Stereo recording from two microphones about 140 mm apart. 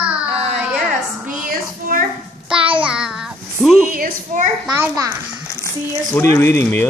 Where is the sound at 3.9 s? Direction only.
75° right (ahead or behind).